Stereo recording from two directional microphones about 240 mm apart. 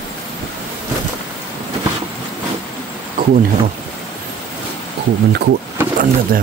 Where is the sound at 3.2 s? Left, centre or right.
Right.